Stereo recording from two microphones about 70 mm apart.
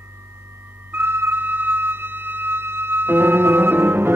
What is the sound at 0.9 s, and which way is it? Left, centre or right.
Music, right.